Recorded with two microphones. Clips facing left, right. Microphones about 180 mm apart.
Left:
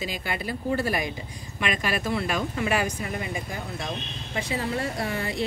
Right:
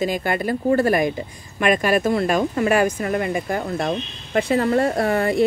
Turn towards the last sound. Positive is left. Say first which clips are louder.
# right 10 dB
turn(degrees=-55)  # may be behind; listen again after turning